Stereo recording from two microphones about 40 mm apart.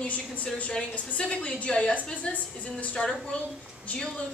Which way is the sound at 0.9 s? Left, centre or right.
Left.